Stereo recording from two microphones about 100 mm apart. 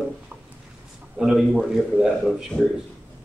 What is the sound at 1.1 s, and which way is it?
A man's voice, 5° right (ahead or behind).